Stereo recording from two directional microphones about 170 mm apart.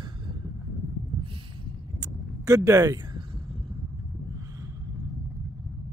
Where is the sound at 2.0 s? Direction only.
20° right (ahead or behind).